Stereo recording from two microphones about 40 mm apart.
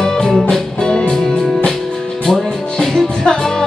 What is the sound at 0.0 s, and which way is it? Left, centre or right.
Music, centre.